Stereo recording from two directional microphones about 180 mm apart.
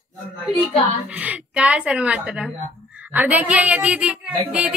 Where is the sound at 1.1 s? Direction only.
5° right (ahead or behind).